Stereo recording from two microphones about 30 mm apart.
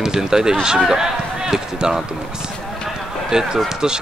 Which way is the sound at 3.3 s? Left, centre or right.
Right.